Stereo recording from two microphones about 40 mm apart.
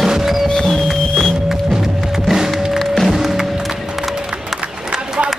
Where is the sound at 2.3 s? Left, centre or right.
Centre.